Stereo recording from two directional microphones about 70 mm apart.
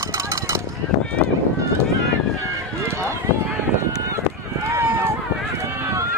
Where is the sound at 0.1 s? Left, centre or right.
Right.